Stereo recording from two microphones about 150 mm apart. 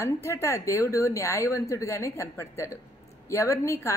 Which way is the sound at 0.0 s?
20° left (ahead or behind).